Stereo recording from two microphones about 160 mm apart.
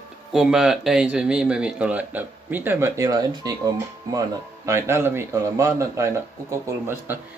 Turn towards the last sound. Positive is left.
turn(degrees=-15)  # may be behind; listen again after turning